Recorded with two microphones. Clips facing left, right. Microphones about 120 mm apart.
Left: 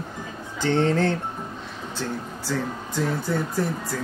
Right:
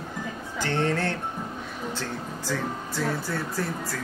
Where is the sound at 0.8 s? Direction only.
15° left (ahead or behind).